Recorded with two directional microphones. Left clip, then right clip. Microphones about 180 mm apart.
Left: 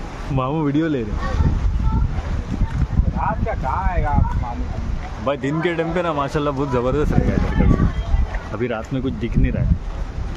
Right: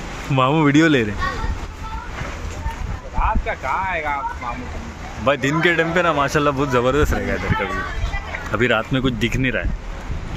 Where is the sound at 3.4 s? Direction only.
40° left (ahead or behind).